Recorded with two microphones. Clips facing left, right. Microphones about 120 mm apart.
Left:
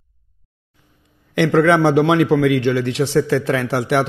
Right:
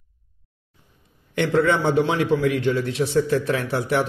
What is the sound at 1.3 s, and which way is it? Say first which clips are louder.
A man's voice: left 5 dB; 90° left.